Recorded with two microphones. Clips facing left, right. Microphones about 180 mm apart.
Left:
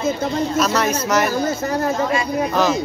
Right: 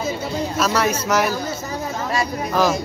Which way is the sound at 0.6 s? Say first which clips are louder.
Right 1 dB; 5° right (ahead or behind).